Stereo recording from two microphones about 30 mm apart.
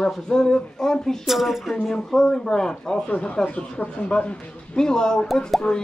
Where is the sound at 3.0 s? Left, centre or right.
Left.